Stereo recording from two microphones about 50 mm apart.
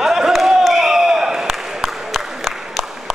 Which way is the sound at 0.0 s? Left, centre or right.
Centre.